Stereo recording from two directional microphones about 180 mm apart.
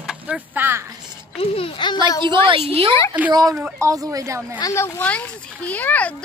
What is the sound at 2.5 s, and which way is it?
Speech, 30° right (ahead or behind).